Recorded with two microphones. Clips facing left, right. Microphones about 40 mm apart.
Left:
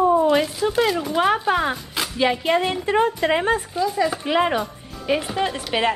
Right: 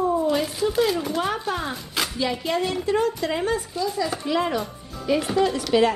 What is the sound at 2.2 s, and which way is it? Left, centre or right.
A woman's voice, left.